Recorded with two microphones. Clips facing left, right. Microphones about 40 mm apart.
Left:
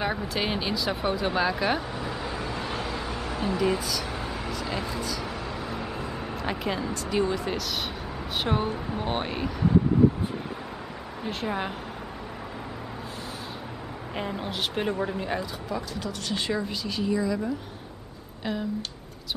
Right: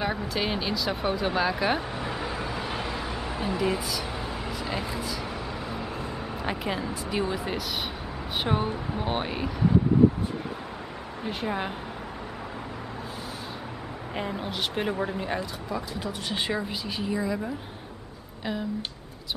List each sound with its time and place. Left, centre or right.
0.0 s speech: centre
2.0 s vehicle: centre
6.4 s speech: centre
11.2 s speech: centre
14.1 s speech: centre
15.9 s speech: centre